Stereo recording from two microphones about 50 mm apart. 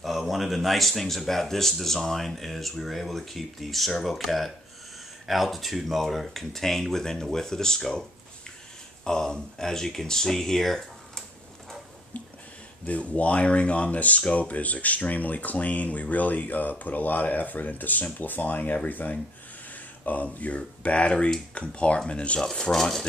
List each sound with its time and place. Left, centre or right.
0.0 s speech: centre
9.0 s speech: centre
12.8 s speech: left
22.4 s speech: centre